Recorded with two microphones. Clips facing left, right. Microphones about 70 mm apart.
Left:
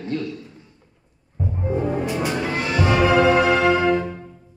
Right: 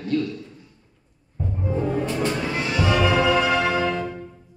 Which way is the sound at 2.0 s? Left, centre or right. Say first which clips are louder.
Left 1 dB; centre.